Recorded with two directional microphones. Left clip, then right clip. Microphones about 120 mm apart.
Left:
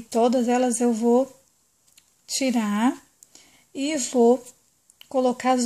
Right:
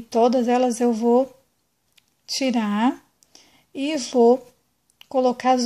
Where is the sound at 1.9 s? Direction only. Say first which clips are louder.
Right 2 dB; 15° left (ahead or behind).